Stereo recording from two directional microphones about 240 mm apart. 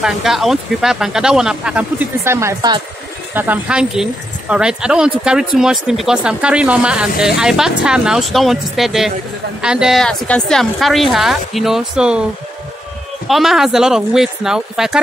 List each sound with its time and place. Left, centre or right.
0.0 s speech: centre
13.3 s speech: centre